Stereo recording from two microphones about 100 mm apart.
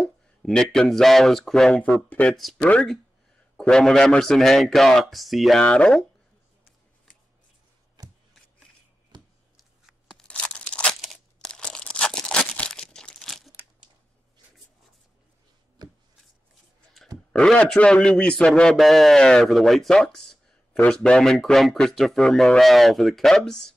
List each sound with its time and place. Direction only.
0.0 s speech: 5° left (ahead or behind)
2.3 s speech: centre (ahead or behind)
2.6 s a man's voice: 10° left (ahead or behind)
5.6 s a man's voice: 10° left (ahead or behind)
8.0 s chopping: 40° right (ahead or behind)
9.1 s a sound: 50° right (ahead or behind)
10.1 s tearing: 10° left (ahead or behind)
11.3 s crumpling: 10° left (ahead or behind)
17.3 s a man's voice: 10° left (ahead or behind)